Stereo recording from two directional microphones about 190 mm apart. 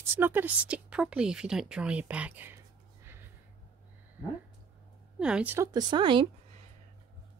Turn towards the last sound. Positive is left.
turn(degrees=-25)  # may be behind; listen again after turning